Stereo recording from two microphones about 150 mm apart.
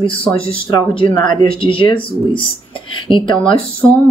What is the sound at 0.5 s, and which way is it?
A woman's voice, 35° left (ahead or behind).